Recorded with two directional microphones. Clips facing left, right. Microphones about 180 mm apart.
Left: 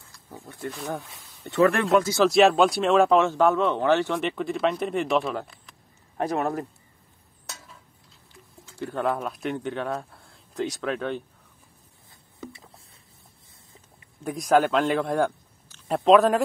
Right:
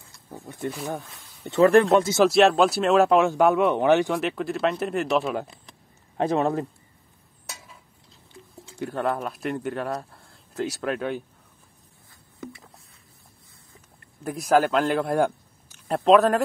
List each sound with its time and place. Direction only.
0.0 s wild animals: 20° right (ahead or behind)
0.7 s speech: 5° right (ahead or behind)
0.9 s speech: 15° right (ahead or behind)
1.6 s speech: 30° right (ahead or behind)
2.2 s speech: centre (ahead or behind)
4.2 s speech: centre (ahead or behind)
5.3 s speech: 20° right (ahead or behind)
5.7 s a sound: 25° right (ahead or behind)
8.3 s a sound: 20° right (ahead or behind)
8.9 s speech: centre (ahead or behind)
12.1 s a sound: 25° left (ahead or behind)
13.9 s speech: 5° right (ahead or behind)